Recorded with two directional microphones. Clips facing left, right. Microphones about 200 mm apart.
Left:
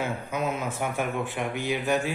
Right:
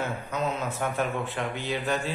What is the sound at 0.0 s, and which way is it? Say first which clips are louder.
A man's voice: left 1 dB; 10° left (ahead or behind).